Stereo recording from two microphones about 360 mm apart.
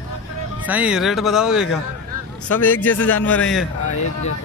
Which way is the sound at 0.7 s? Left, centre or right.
Centre.